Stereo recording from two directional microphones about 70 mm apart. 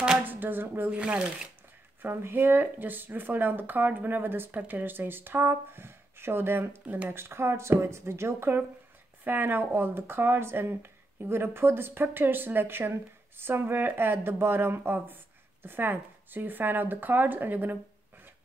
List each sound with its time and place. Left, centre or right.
0.3 s speech: right
2.0 s speech: right